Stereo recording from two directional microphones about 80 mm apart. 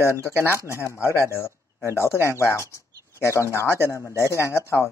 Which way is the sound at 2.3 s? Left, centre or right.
Left.